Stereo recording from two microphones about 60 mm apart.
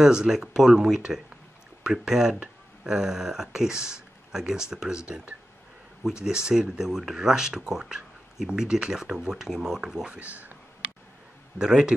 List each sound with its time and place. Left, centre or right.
0.0 s speech: centre
10.1 s speech: right
11.5 s speech: centre